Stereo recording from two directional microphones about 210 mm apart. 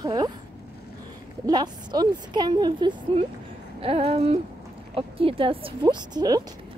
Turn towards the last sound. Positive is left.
turn(degrees=-20)  # may be behind; listen again after turning